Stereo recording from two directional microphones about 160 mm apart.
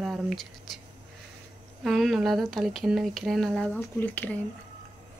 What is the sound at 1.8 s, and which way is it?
Speech, centre (ahead or behind).